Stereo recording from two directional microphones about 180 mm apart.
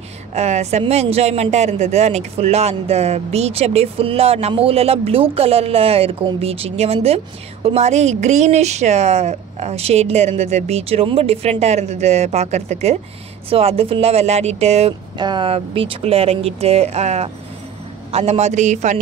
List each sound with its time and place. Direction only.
0.3 s speech: 35° right (ahead or behind)
15.1 s speech: 25° right (ahead or behind); by 18.9 s 40° right (ahead or behind)